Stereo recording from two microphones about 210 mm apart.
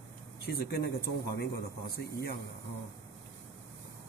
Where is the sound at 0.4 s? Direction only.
45° left (ahead or behind).